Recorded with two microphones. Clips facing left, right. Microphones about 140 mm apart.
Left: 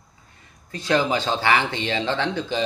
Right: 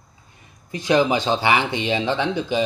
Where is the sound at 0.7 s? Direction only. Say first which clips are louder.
Right 3 dB; 15° right (ahead or behind).